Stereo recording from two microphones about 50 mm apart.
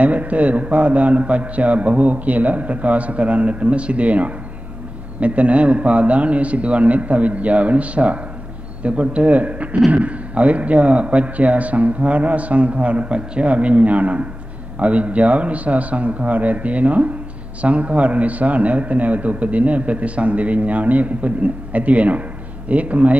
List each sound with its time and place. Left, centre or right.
0.0 s a man's voice: right